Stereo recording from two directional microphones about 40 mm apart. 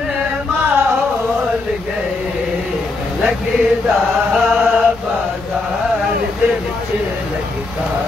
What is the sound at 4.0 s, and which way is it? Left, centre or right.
Chant, centre.